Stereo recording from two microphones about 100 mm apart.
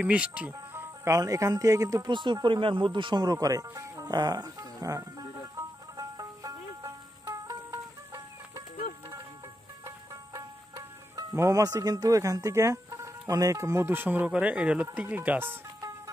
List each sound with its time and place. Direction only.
0.0 s speech: 15° right (ahead or behind)
0.7 s speech: 30° right (ahead or behind)
2.0 s speech: 50° right (ahead or behind); by 5.2 s 35° right (ahead or behind)
5.9 s music: 40° right (ahead or behind)
9.8 s music: 35° right (ahead or behind)
13.3 s speech: 35° right (ahead or behind)